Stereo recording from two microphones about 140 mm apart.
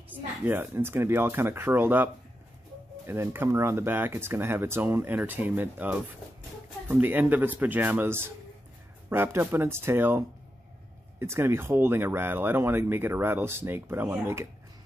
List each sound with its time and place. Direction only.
0.1 s speech: 15° right (ahead or behind)
3.1 s speech: 15° right (ahead or behind)